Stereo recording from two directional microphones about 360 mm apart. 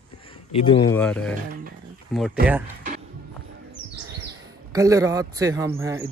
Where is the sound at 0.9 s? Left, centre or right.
Centre.